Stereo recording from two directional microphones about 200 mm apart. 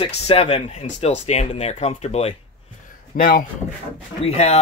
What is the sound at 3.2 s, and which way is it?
Speech, 45° left (ahead or behind).